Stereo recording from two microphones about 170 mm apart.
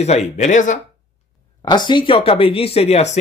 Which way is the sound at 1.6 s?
25° left (ahead or behind).